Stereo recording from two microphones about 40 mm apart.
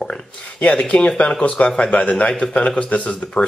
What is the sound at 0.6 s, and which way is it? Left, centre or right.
Speech, left.